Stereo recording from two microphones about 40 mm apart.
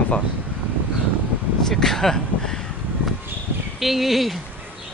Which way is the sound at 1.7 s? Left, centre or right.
Centre.